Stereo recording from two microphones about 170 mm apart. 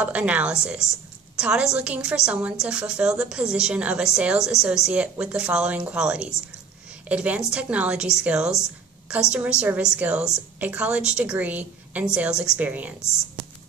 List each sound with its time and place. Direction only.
0.0 s a woman's voice: 5° right (ahead or behind)
0.8 s a woman's voice: 15° left (ahead or behind)
1.4 s a woman's voice: 5° right (ahead or behind)